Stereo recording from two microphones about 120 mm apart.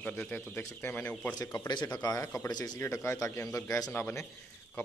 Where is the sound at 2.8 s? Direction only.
20° left (ahead or behind).